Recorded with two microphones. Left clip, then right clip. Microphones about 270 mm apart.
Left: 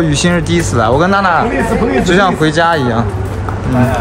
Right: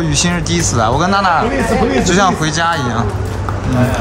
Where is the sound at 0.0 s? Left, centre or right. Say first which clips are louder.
Left 3 dB; centre.